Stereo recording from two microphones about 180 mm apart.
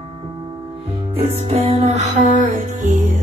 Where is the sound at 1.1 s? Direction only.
35° right (ahead or behind).